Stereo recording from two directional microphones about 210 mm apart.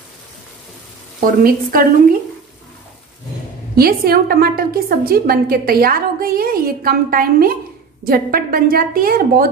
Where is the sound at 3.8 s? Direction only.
45° right (ahead or behind).